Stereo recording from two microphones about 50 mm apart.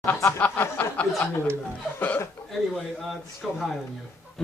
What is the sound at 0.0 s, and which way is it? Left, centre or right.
Speech, left.